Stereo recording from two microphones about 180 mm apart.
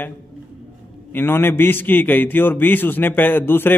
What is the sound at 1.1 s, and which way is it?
A man's voice, 10° left (ahead or behind).